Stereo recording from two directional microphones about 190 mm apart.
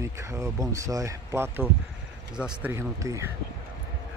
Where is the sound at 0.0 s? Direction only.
15° right (ahead or behind).